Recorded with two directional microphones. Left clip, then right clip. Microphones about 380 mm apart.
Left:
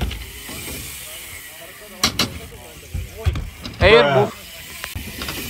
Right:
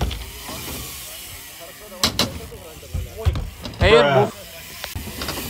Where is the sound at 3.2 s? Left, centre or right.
Centre.